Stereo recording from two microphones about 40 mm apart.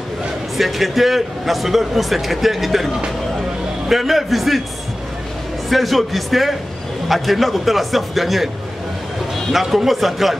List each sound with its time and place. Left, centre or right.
0.6 s a man's voice: centre
3.9 s a man's voice: centre
5.7 s a man's voice: centre
9.5 s a man's voice: centre